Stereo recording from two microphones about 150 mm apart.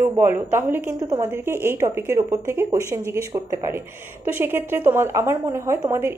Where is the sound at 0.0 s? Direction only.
15° right (ahead or behind).